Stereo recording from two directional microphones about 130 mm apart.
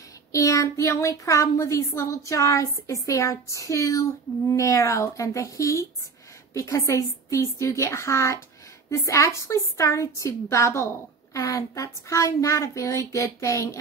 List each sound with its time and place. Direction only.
0.3 s speech: 25° left (ahead or behind)